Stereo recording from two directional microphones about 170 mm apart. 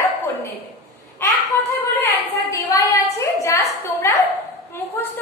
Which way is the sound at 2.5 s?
20° left (ahead or behind).